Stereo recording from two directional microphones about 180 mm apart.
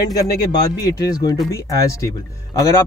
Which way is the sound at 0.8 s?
20° left (ahead or behind).